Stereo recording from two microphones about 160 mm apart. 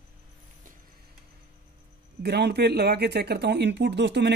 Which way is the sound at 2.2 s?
90° right.